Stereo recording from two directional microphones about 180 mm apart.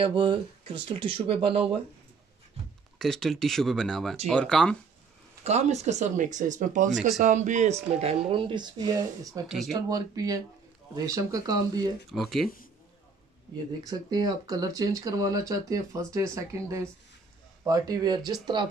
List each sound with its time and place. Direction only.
0.0 s speech: 25° right (ahead or behind)
3.0 s speech: centre (ahead or behind)
5.4 s speech: 40° right (ahead or behind)
8.0 s speech: 30° right (ahead or behind)
12.1 s speech: centre (ahead or behind)
13.8 s speech: 20° right (ahead or behind)